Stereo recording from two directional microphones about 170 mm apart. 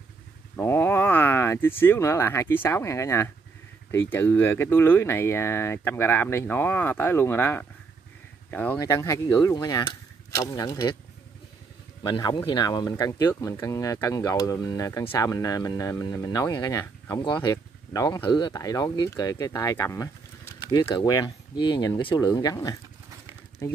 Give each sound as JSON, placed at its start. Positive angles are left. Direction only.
{"t": 0.6, "sound": "speech", "side_deg": 15}
{"t": 12.0, "sound": "speech", "side_deg": 25}